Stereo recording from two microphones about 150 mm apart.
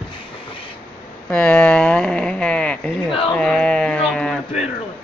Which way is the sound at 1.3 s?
10° left (ahead or behind).